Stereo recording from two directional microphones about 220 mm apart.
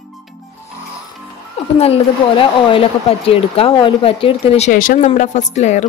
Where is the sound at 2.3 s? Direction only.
25° left (ahead or behind).